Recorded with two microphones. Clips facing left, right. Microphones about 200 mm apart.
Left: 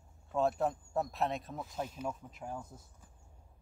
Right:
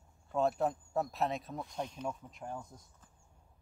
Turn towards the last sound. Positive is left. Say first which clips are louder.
# left 1 dB
turn(degrees=5)  # may be behind; listen again after turning